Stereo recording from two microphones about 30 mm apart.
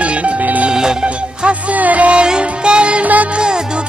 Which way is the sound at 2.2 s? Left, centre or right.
Right.